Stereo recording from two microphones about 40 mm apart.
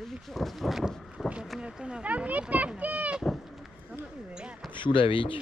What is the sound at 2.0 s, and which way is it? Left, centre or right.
Speech, right.